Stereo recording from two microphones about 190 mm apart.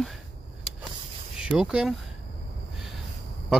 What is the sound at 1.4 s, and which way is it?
Speech, 5° right (ahead or behind).